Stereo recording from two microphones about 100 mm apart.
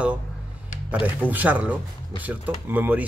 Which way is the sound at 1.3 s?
15° right (ahead or behind).